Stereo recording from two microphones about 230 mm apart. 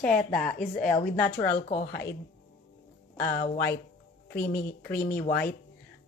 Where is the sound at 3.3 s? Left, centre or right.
Left.